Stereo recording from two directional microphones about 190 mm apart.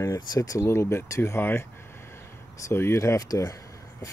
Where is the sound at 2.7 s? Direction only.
15° left (ahead or behind).